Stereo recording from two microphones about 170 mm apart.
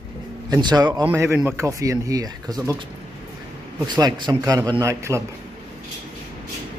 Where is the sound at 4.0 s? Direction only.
25° right (ahead or behind).